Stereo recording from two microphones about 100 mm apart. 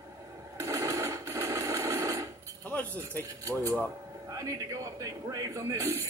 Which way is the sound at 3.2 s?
30° right (ahead or behind).